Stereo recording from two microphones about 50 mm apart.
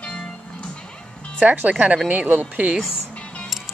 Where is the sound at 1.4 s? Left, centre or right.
Right.